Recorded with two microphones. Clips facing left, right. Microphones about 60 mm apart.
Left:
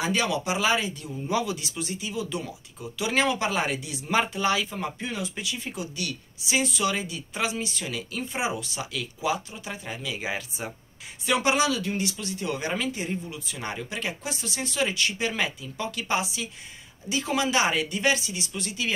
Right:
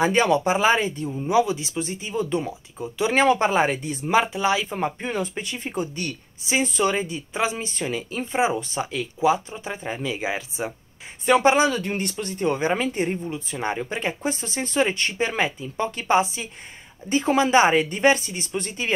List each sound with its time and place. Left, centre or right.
0.0 s speech: right
4.1 s speech: centre
4.6 s speech: right
10.1 s speech: centre
11.2 s speech: right